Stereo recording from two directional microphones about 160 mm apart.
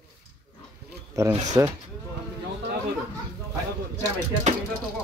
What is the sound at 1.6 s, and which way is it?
Speech, 20° right (ahead or behind).